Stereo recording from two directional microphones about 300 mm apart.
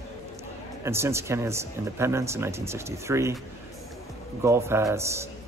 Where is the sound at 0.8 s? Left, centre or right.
Centre.